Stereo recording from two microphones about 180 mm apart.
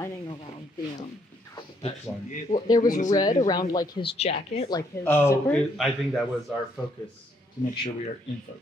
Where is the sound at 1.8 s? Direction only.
40° left (ahead or behind).